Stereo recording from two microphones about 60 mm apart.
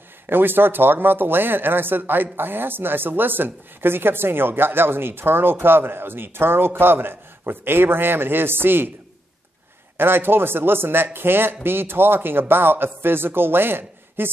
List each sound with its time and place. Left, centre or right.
0.3 s speech: right
9.9 s speech: right